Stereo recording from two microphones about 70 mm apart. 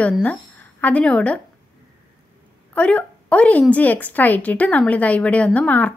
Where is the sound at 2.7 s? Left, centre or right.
Centre.